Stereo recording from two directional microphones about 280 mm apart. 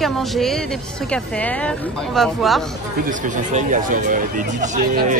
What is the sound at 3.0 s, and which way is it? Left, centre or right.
Speech, right.